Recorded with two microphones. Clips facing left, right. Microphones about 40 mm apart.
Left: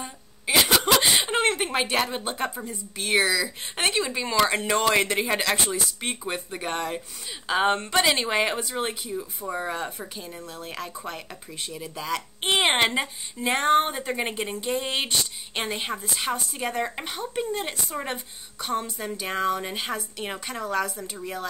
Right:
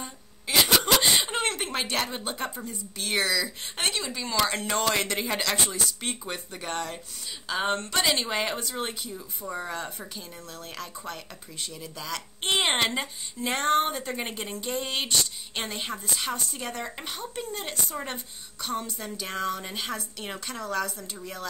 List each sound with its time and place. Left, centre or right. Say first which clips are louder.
0.0 s throat clearing: left 5 dB; centre
0.8 s speech: left 2 dB; centre